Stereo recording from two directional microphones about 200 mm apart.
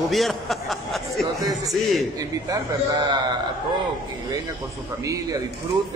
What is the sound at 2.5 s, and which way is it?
Speech, 20° right (ahead or behind).